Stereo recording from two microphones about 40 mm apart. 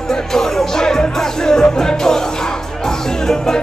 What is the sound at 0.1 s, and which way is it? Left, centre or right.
Music, centre.